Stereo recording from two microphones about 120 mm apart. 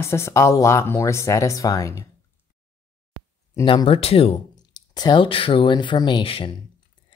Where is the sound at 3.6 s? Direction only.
45° left (ahead or behind).